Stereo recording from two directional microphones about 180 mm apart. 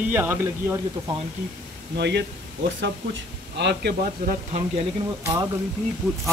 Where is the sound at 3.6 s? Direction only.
70° right (ahead or behind).